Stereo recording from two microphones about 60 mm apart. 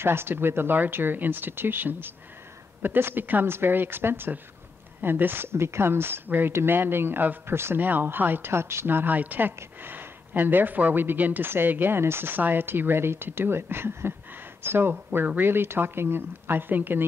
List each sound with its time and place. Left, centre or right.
0.0 s speech: right